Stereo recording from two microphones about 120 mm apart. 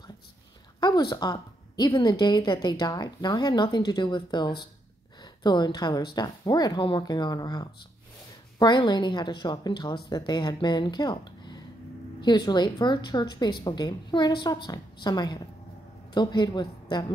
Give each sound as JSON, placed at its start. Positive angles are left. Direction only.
{"t": 0.7, "sound": "a woman's voice", "side_deg": 35}